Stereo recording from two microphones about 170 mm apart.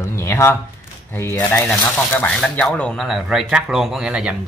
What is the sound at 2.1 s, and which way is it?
Speech, 10° left (ahead or behind).